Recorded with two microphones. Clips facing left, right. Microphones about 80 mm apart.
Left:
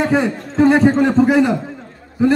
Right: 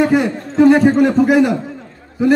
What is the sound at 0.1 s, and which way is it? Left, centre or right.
Speech, left.